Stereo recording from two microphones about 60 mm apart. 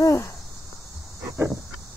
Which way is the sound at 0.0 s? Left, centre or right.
Left.